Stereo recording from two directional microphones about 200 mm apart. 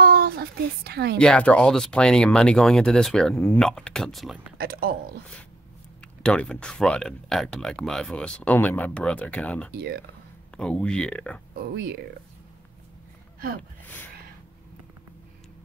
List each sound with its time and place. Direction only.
0.0 s a sound: 50° right (ahead or behind)
1.2 s speech: 5° left (ahead or behind)
4.6 s speech: 50° right (ahead or behind)
6.2 s speech: 5° left (ahead or behind)
9.8 s speech: 55° right (ahead or behind)
10.6 s speech: 5° left (ahead or behind)
11.5 s speech: 50° right (ahead or behind)